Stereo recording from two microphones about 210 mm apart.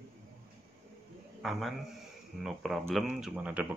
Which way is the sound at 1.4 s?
Centre (ahead or behind).